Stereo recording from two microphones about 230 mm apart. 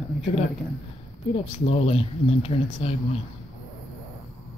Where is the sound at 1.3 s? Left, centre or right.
Left.